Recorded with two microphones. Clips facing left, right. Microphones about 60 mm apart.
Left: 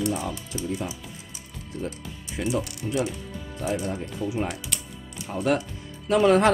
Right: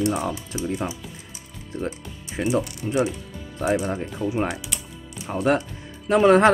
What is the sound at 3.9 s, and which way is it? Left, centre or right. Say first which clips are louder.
Speech: right 3 dB; right.